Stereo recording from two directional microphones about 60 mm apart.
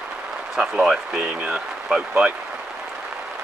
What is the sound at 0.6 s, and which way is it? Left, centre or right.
Speech, centre.